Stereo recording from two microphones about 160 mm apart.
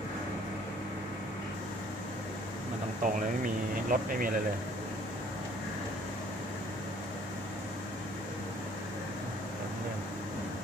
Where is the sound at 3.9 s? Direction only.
60° right (ahead or behind).